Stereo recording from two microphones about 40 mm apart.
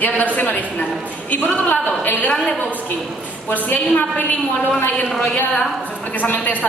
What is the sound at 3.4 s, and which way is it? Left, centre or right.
Speech, left.